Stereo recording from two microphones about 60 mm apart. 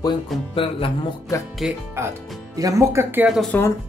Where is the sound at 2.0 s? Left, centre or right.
Right.